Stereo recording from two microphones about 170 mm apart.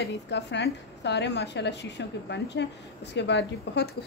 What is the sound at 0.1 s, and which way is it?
A woman's voice, 90° left.